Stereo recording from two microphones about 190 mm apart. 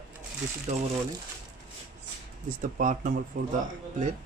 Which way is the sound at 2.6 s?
45° right (ahead or behind).